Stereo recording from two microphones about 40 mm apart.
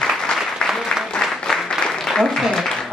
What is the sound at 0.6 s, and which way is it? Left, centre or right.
Applause, centre.